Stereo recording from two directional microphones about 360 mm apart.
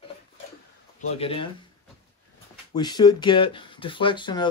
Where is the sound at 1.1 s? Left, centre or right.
Centre.